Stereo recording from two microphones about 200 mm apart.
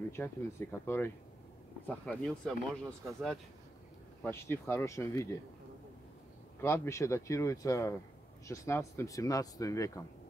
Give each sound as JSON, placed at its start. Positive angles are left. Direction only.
{"t": 0.1, "sound": "speech", "side_deg": 10}
{"t": 4.2, "sound": "speech", "side_deg": 10}
{"t": 6.6, "sound": "speech", "side_deg": 15}